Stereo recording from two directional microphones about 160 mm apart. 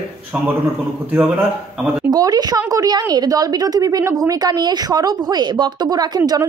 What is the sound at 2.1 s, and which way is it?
A woman's voice, 25° right (ahead or behind).